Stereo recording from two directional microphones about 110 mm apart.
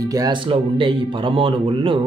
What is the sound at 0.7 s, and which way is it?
Speech, 50° right (ahead or behind).